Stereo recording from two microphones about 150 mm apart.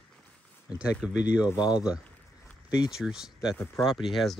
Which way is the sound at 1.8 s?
5° right (ahead or behind).